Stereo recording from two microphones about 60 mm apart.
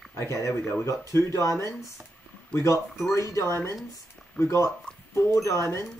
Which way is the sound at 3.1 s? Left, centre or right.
Left.